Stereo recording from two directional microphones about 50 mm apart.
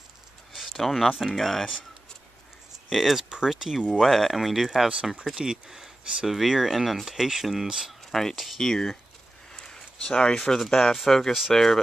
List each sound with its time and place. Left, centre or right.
0.7 s speech: centre
2.9 s speech: centre
4.8 s speech: centre
8.1 s speech: centre
9.5 s a sound: centre
10.4 s speech: centre